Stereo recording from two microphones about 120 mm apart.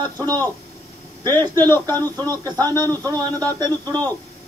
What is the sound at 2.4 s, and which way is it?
Speech, 30° right (ahead or behind).